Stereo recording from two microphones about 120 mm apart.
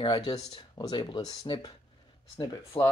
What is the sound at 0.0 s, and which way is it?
Speech, 40° left (ahead or behind).